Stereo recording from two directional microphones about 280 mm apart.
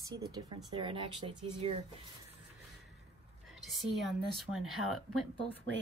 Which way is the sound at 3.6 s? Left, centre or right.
Centre.